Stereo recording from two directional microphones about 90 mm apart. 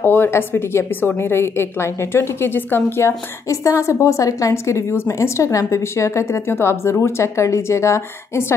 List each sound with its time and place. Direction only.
0.0 s a woman's voice: 25° left (ahead or behind)